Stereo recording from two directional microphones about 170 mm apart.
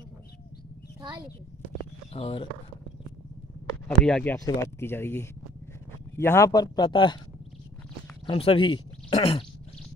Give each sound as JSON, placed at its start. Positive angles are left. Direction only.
{"t": 2.1, "sound": "speech", "side_deg": 30}
{"t": 4.0, "sound": "speech", "side_deg": 5}
{"t": 8.3, "sound": "speech", "side_deg": 30}